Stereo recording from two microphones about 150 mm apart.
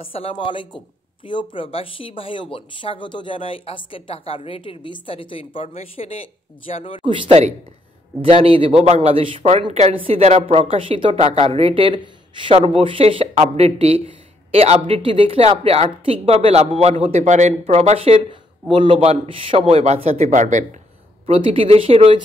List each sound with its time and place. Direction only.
0.0 s speech: 40° left (ahead or behind)
7.0 s a man's voice: 35° right (ahead or behind); by 20.6 s 55° right (ahead or behind)
21.3 s a man's voice: 40° right (ahead or behind)